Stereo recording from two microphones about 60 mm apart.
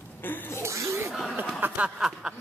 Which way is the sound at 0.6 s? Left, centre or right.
Right.